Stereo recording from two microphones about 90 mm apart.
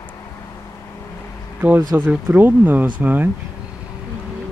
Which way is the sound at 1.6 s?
20° right (ahead or behind).